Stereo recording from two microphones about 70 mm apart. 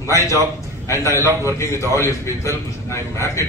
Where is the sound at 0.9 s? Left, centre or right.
Left.